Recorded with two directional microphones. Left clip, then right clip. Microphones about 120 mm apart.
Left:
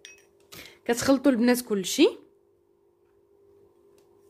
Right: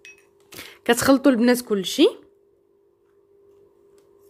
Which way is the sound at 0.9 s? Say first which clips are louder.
Right 5 dB; 35° right (ahead or behind).